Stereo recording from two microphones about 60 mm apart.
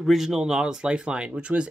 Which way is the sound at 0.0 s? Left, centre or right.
Centre.